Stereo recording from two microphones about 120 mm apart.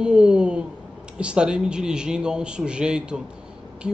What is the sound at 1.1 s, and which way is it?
Speech, 10° right (ahead or behind).